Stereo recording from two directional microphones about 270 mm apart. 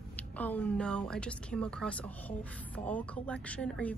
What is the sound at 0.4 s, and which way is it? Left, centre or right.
Speech, centre.